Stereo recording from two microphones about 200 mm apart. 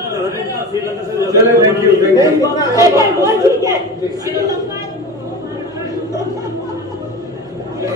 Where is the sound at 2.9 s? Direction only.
15° right (ahead or behind).